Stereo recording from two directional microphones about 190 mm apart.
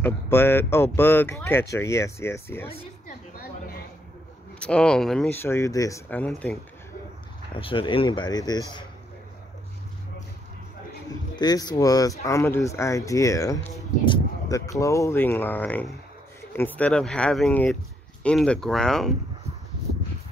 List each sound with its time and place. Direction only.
0.0 s speech: 10° left (ahead or behind)
3.1 s a sound: 50° left (ahead or behind)
4.6 s speech: 5° left (ahead or behind)
7.5 s speech: 25° left (ahead or behind)
11.3 s speech: 20° left (ahead or behind); by 19.1 s centre (ahead or behind)